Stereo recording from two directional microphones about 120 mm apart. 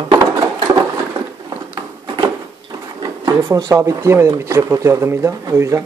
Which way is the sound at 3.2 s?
30° right (ahead or behind).